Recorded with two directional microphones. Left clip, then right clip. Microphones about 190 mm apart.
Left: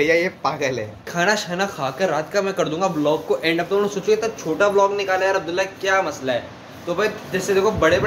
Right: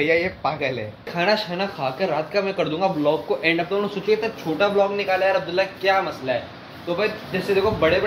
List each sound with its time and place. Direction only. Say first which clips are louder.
0.0 s speech: left 2 dB; 5° left (ahead or behind)